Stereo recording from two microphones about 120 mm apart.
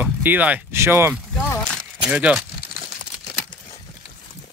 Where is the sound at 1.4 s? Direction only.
10° left (ahead or behind).